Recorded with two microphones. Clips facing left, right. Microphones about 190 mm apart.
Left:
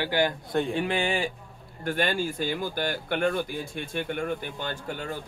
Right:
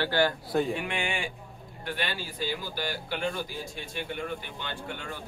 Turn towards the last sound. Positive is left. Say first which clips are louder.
# left 4 dB
turn(degrees=40)  # may be behind; listen again after turning